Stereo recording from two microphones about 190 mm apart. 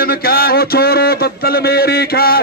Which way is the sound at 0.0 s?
55° left (ahead or behind).